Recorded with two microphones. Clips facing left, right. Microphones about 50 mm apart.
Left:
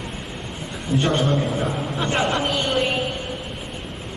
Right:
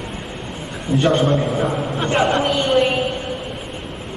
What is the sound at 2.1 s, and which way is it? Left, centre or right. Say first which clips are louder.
Speech: right 5 dB; right.